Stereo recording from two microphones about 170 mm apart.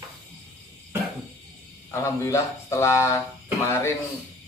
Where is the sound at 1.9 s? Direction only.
15° left (ahead or behind).